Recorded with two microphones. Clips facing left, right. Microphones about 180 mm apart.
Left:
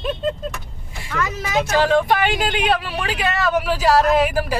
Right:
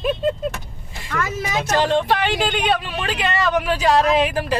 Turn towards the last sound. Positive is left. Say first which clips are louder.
# left 1 dB
turn(degrees=5)  # may be behind; listen again after turning